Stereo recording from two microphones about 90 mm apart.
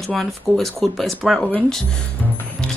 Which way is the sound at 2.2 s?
20° left (ahead or behind).